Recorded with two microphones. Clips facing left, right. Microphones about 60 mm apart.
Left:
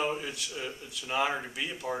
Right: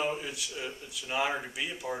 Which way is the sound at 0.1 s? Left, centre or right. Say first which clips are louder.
Left 1 dB; centre.